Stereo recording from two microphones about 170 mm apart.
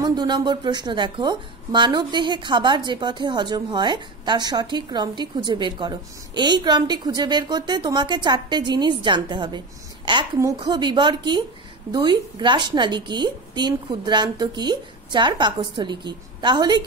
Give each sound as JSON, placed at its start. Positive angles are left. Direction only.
{"t": 0.0, "sound": "a woman's voice", "side_deg": -25}